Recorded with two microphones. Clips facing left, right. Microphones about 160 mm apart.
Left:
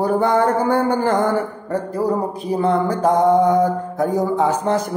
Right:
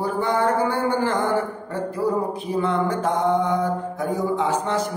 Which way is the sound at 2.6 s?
35° left (ahead or behind).